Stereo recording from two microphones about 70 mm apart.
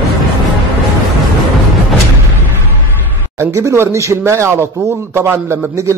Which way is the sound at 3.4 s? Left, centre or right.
Right.